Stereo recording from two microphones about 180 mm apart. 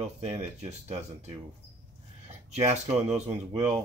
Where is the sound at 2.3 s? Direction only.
40° right (ahead or behind).